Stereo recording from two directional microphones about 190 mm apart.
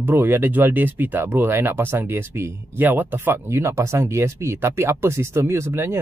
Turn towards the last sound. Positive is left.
turn(degrees=-15)  # may be behind; listen again after turning